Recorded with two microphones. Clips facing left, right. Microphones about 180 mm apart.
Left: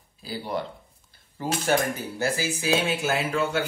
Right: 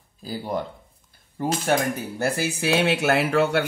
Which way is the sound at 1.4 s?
60° right (ahead or behind).